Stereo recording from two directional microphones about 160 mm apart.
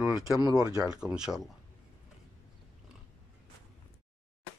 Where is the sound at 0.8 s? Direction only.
5° right (ahead or behind).